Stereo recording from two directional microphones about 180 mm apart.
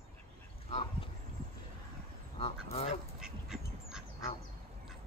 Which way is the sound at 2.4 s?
30° left (ahead or behind).